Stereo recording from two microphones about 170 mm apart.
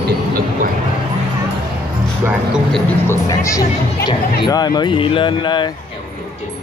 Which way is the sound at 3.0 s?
20° left (ahead or behind).